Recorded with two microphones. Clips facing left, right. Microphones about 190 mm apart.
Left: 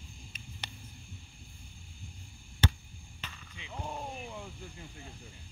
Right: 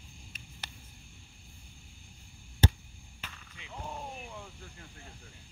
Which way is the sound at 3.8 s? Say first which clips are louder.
Left 2 dB; 10° left (ahead or behind).